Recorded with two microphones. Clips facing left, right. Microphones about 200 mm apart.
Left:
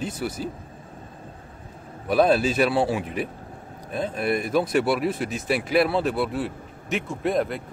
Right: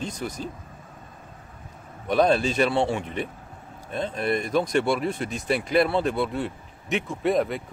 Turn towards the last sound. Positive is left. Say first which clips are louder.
# right 1 dB
turn(degrees=0)  # may be behind; listen again after turning